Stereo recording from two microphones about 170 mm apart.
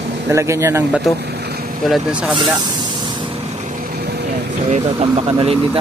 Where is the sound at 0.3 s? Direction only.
15° right (ahead or behind).